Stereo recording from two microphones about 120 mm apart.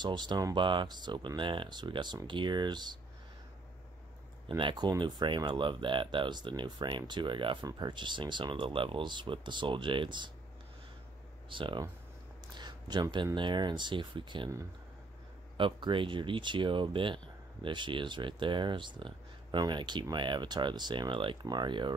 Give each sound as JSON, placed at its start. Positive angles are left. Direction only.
{"t": 0.0, "sound": "speech", "side_deg": -40}
{"t": 4.5, "sound": "speech", "side_deg": -40}
{"t": 11.4, "sound": "speech", "side_deg": -45}
{"t": 15.5, "sound": "speech", "side_deg": -45}